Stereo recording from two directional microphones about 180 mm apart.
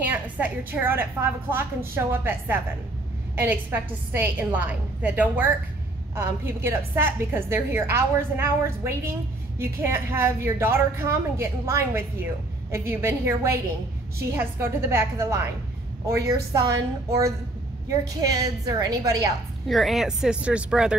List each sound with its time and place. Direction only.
0.0 s a woman's voice: 10° right (ahead or behind)
18.0 s a woman's voice: 20° right (ahead or behind)
19.7 s speech: centre (ahead or behind)